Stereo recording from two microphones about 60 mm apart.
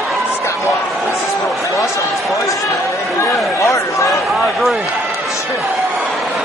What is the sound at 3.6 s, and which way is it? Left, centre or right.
Speech, left.